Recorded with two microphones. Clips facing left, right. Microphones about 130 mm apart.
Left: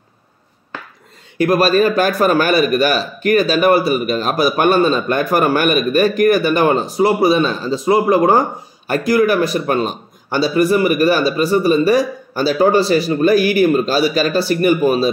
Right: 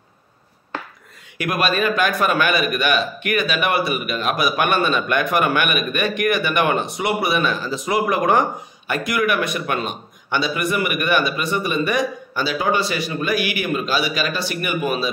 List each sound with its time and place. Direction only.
1.4 s speech: 35° left (ahead or behind)